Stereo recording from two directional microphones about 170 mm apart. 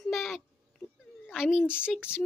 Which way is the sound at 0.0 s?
Centre (ahead or behind).